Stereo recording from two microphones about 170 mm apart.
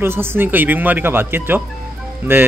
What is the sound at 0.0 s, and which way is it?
A man's voice, 15° right (ahead or behind).